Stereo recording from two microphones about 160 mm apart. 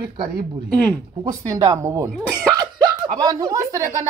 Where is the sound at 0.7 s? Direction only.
10° left (ahead or behind).